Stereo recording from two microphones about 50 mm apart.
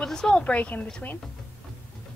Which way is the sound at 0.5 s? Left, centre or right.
Left.